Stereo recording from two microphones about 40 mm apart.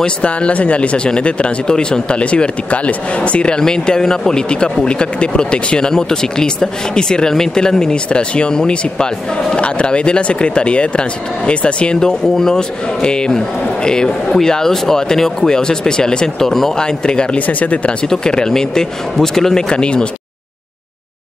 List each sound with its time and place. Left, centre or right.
0.0 s speech: left
12.1 s speech: centre
12.5 s speech: left
17.4 s speech: left
18.0 s speech: centre
19.7 s speech: left